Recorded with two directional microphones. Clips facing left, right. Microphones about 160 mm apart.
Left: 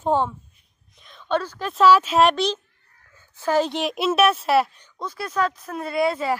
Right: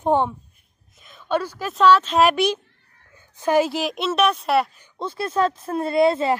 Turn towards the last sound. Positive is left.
turn(degrees=-25)  # may be behind; listen again after turning